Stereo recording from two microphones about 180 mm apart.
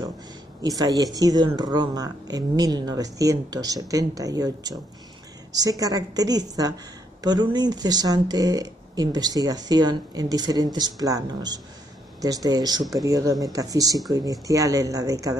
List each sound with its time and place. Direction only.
0.6 s speech: 20° right (ahead or behind)